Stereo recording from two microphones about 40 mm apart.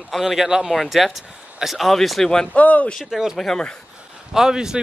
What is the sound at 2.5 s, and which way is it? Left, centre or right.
Speech, left.